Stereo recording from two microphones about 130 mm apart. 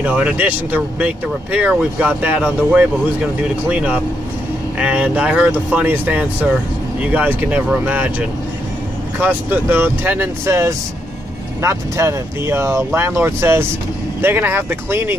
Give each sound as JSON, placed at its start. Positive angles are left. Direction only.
{"t": 0.0, "sound": "speech", "side_deg": -10}